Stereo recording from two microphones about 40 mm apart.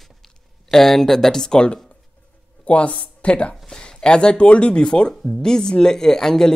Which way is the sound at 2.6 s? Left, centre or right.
Left.